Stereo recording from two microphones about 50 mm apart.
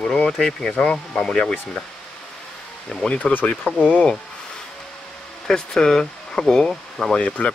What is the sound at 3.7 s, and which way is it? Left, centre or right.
Speech, left.